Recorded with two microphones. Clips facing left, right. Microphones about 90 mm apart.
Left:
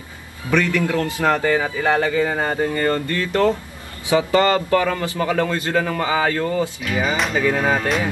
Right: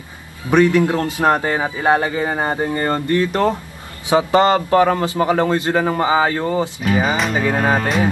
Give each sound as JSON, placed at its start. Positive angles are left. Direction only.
{"t": 0.5, "sound": "a man's voice", "side_deg": -20}
{"t": 6.8, "sound": "music", "side_deg": -40}